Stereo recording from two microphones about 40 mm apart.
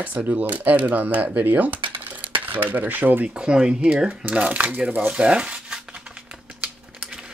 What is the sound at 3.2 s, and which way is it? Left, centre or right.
Speech, right.